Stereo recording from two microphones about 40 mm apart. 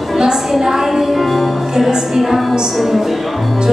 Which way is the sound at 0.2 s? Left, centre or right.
Centre.